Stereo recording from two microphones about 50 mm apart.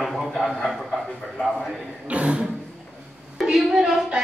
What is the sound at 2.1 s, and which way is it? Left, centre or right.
Music, right.